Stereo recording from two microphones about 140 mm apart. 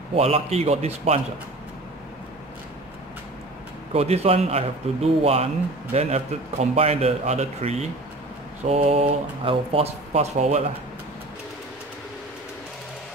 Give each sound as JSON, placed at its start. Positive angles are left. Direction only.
{"t": 0.1, "sound": "speech", "side_deg": -45}
{"t": 3.9, "sound": "speech", "side_deg": -45}